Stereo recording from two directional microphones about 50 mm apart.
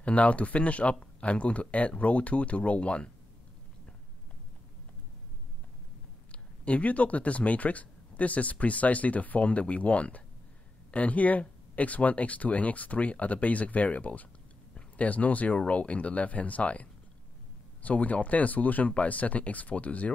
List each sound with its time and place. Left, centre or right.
0.0 s speech: left
6.3 s speech: left
17.8 s speech: left